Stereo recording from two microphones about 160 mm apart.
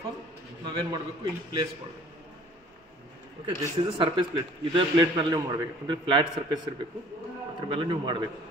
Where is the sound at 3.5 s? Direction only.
30° right (ahead or behind).